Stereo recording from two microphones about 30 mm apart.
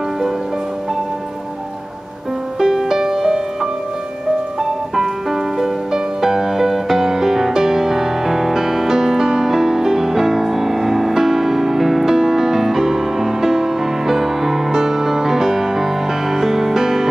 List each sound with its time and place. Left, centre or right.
2.6 s music: centre
6.2 s music: centre